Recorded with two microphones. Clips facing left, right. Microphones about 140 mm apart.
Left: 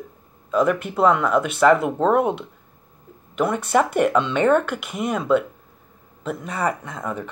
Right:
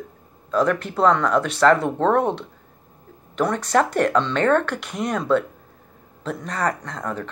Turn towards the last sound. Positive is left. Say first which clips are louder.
# even
turn(degrees=5)  # may be behind; listen again after turning